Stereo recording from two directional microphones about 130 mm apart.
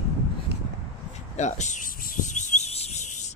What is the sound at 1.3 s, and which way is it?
Rub, 65° left (ahead or behind).